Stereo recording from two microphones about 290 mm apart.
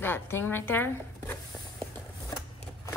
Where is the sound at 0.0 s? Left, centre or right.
Centre.